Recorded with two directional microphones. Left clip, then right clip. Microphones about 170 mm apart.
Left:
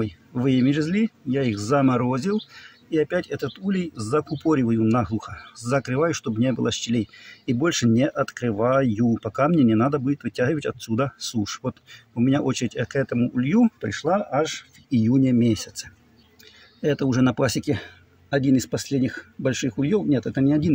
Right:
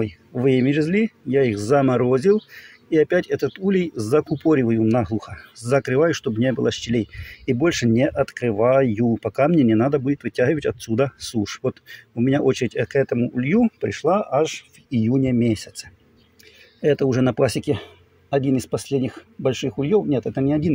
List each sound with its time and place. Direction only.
0.0 s speech: 15° right (ahead or behind)
14.9 s speech: 10° right (ahead or behind)